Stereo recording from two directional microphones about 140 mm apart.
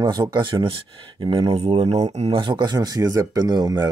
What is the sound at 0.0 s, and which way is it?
Speech, 30° right (ahead or behind).